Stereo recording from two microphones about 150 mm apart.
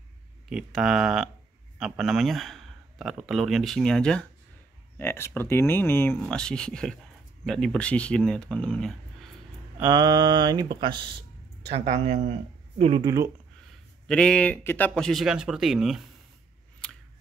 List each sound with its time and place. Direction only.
0.5 s a man's voice: 5° right (ahead or behind)
4.9 s a man's voice: 15° left (ahead or behind)
9.8 s speech: 25° right (ahead or behind)
11.7 s speech: 45° right (ahead or behind)
13.0 s speech: 20° right (ahead or behind)
14.0 s a man's voice: 5° left (ahead or behind)